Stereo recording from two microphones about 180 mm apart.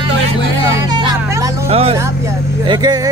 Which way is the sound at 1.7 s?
35° right (ahead or behind).